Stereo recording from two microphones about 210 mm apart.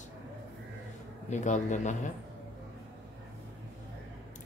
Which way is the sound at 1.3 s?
35° left (ahead or behind).